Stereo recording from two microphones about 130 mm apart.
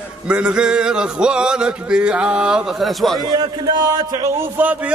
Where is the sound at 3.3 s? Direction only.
30° right (ahead or behind).